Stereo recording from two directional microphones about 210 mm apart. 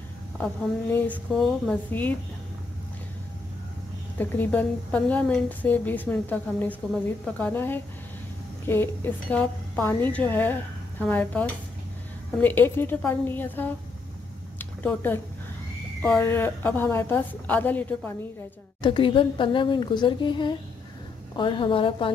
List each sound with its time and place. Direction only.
0.9 s a woman's voice: 5° left (ahead or behind)
4.2 s a woman's voice: 10° left (ahead or behind)
14.6 s a sound: 10° left (ahead or behind)
16.0 s a woman's voice: 10° left (ahead or behind)
18.8 s speech: 25° left (ahead or behind)